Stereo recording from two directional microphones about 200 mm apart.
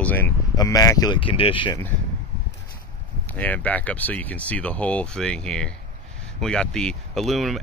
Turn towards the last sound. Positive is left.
turn(degrees=0)  # may be behind; listen again after turning